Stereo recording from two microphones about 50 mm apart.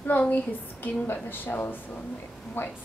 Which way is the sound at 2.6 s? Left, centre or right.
Left.